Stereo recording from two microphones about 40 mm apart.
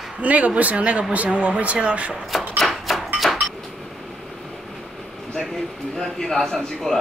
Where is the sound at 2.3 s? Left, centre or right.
Centre.